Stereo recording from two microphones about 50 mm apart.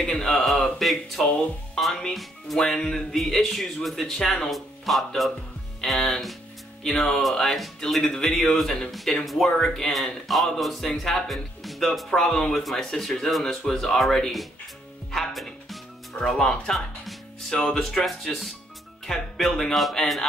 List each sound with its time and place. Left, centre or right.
0.0 s speech: centre
11.6 s music: centre
12.1 s speech: centre
15.0 s music: centre
16.2 s speech: centre
17.7 s speech: centre